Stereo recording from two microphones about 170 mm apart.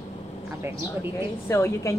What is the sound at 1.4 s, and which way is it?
Speech, 15° left (ahead or behind).